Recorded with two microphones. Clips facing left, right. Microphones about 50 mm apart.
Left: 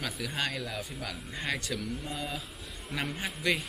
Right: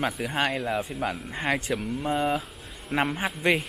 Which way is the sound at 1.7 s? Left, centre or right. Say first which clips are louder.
Right 9 dB; right.